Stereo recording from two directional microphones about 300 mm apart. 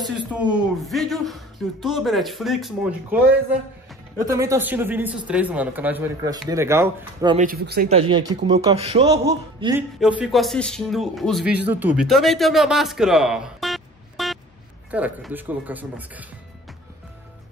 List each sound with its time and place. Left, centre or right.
0.3 s a man's voice: centre
7.3 s speech: right
7.9 s a man's voice: centre